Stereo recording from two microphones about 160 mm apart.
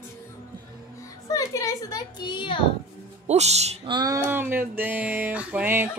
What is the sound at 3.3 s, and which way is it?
Speech, 40° right (ahead or behind).